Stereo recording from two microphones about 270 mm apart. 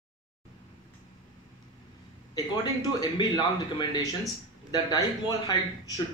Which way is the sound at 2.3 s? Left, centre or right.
Centre.